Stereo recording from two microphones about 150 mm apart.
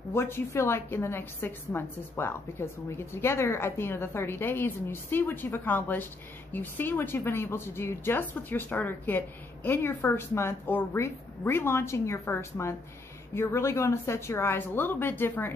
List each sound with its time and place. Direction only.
0.1 s speech: 15° left (ahead or behind)